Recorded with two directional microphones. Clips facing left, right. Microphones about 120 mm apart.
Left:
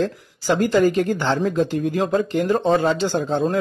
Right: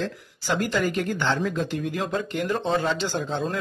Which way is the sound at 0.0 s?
45° left (ahead or behind).